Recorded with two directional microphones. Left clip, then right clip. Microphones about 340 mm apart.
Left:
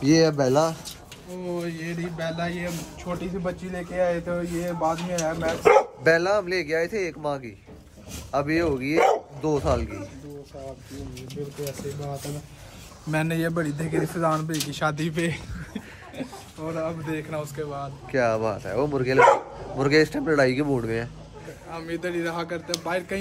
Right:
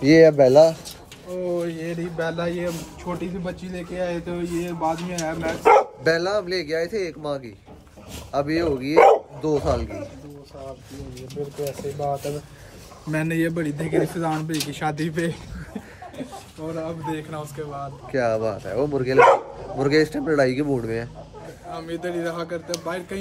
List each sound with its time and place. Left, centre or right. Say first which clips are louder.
0.0 s a man's voice: right 7 dB; centre
2.1 s a man's voice: right 4 dB; left
2.5 s a man's voice: right 4 dB; centre
11.6 s a man's voice: right 8 dB; centre
13.5 s a man's voice: right 2 dB; centre